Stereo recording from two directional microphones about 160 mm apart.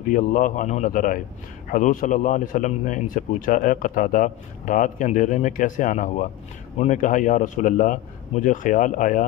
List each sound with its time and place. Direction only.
0.1 s a man's voice: 55° left (ahead or behind)